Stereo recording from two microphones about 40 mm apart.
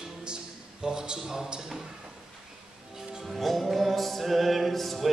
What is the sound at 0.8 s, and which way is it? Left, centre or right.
Speech, centre.